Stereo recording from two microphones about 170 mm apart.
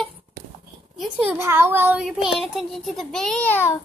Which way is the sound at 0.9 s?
10° right (ahead or behind).